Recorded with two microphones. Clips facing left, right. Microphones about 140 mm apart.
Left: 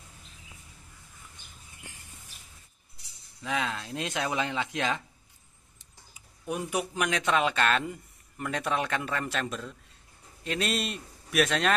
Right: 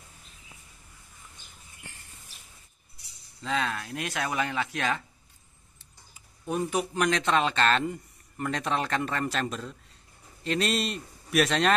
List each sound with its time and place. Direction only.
1.9 s a sound: 15° left (ahead or behind)
3.4 s speech: 15° left (ahead or behind)
6.1 s a man's voice: 10° left (ahead or behind)